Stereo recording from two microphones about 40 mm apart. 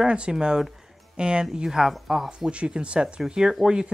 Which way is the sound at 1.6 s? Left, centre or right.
Centre.